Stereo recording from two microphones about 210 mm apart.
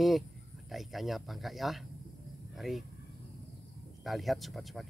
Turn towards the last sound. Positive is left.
turn(degrees=0)  # may be behind; listen again after turning